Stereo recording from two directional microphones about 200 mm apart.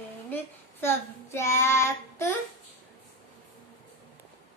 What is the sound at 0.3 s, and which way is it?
Child singing, 10° left (ahead or behind).